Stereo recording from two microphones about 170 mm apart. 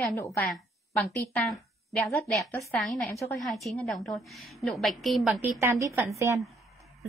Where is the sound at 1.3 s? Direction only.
Centre (ahead or behind).